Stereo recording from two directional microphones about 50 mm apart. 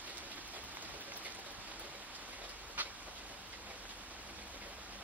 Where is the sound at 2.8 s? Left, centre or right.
Right.